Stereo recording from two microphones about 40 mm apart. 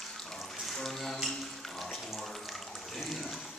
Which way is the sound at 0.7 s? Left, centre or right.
Centre.